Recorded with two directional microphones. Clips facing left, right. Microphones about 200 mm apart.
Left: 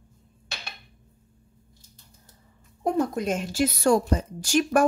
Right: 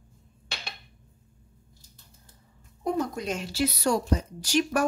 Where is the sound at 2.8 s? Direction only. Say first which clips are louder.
Left 4 dB; 50° left (ahead or behind).